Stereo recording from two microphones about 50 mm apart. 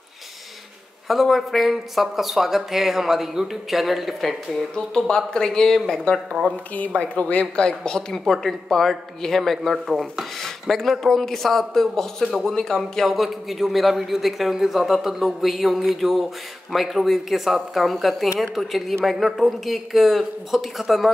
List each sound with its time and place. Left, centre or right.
1.0 s a man's voice: centre
4.7 s speech: centre
6.5 s speech: left
8.1 s a man's voice: centre
12.3 s a man's voice: centre
12.5 s a man's voice: centre